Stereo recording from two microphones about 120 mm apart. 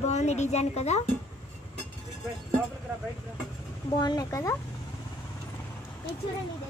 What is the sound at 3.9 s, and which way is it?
Speech, 35° left (ahead or behind).